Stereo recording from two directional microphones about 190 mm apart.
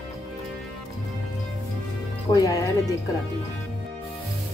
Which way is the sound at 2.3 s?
15° left (ahead or behind).